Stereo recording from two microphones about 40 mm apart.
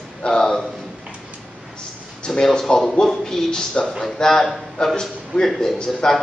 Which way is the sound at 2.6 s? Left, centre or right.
Centre.